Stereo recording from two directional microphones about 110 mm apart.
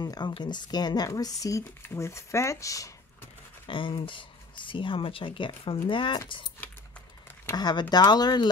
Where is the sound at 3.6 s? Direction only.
50° left (ahead or behind).